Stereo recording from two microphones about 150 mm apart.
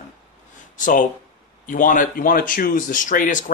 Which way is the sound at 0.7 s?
60° left (ahead or behind).